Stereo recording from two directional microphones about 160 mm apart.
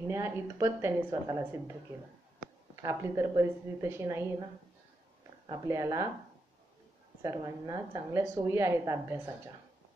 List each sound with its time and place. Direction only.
0.0 s a woman's voice: 15° right (ahead or behind)
5.5 s speech: 20° right (ahead or behind)
7.2 s a woman's voice: 20° right (ahead or behind)